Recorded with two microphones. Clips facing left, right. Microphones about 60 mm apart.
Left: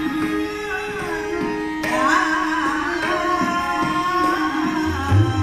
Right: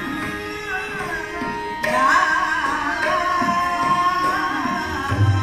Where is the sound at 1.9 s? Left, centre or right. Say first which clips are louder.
Right 2 dB; right.